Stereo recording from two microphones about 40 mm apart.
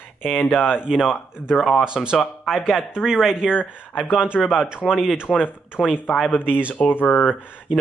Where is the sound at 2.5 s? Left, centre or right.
Centre.